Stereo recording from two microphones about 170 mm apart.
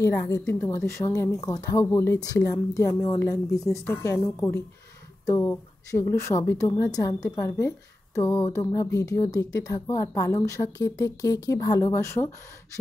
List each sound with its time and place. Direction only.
0.0 s a woman's voice: 15° left (ahead or behind)